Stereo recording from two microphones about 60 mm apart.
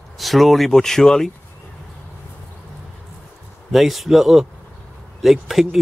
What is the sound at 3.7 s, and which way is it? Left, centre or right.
A man's voice, centre.